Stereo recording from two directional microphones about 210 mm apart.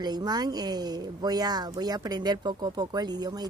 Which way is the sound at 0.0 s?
20° right (ahead or behind).